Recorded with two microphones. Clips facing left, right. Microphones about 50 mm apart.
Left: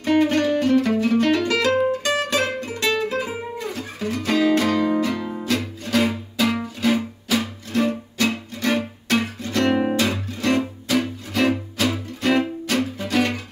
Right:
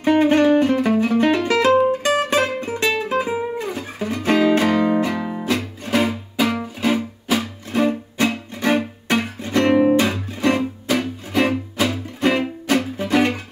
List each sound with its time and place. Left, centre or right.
0.0 s music: right